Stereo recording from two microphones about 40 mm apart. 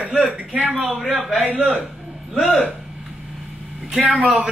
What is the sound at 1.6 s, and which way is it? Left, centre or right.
Music, right.